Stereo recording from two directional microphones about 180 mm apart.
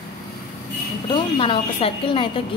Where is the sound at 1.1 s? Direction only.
30° left (ahead or behind).